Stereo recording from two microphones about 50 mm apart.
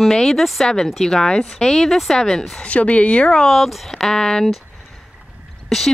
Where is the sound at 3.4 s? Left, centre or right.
Centre.